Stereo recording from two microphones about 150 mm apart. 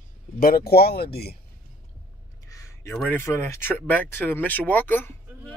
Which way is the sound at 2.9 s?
10° left (ahead or behind).